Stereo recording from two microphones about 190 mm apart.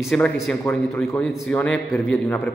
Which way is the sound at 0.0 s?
5° left (ahead or behind).